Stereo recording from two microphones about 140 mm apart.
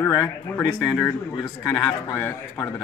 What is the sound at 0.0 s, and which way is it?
Speech, 25° left (ahead or behind).